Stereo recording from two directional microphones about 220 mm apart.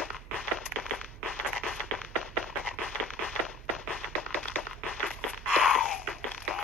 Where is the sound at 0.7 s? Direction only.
10° left (ahead or behind).